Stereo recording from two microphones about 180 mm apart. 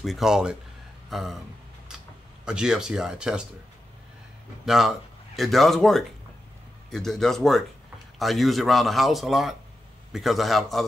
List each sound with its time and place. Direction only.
0.0 s a man's voice: centre (ahead or behind)
2.4 s a man's voice: 5° right (ahead or behind)
4.6 s a man's voice: centre (ahead or behind)